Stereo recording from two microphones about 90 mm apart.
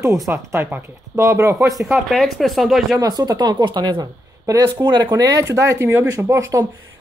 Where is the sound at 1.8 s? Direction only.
Centre (ahead or behind).